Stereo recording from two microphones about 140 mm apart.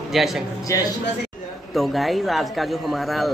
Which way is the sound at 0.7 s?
20° left (ahead or behind).